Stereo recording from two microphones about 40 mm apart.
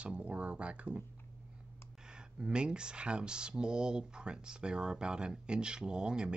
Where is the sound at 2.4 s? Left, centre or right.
Right.